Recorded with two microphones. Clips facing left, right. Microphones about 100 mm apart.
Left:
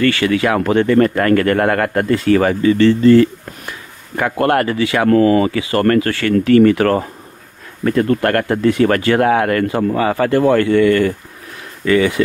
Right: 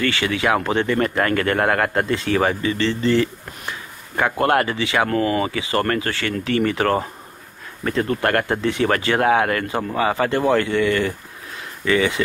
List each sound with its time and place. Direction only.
0.1 s speech: 25° right (ahead or behind)
0.8 s speech: 50° left (ahead or behind)
1.1 s speech: 20° right (ahead or behind)
2.6 s speech: 45° left (ahead or behind)
4.2 s speech: 20° right (ahead or behind)
5.1 s speech: 35° left (ahead or behind)
5.4 s speech: 25° right (ahead or behind)
7.8 s speech: 45° left (ahead or behind)
8.2 s speech: 20° right (ahead or behind)